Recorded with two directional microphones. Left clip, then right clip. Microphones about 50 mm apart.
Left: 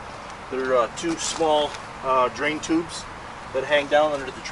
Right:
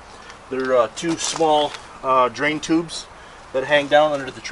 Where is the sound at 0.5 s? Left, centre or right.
Centre.